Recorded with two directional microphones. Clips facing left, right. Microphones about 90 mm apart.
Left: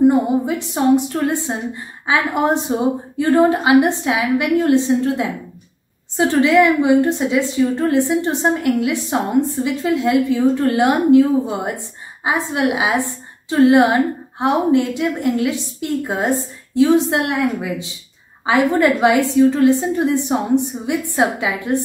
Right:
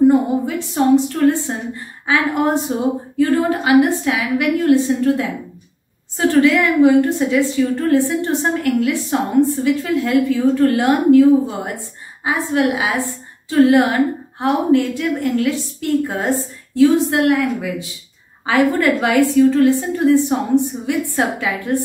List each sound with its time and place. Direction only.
0.0 s a woman's voice: 20° left (ahead or behind)